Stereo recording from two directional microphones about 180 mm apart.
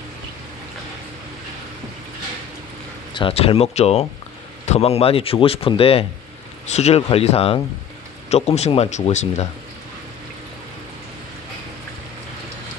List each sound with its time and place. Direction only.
3.1 s speech: 30° left (ahead or behind)